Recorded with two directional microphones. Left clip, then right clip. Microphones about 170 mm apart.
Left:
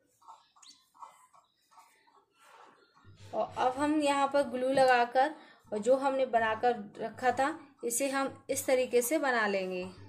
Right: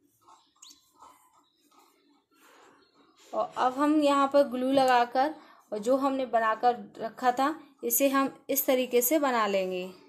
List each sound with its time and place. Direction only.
3.3 s speech: 20° right (ahead or behind)